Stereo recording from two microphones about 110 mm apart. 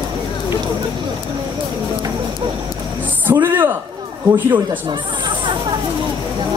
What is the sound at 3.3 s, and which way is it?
Speech, 20° right (ahead or behind).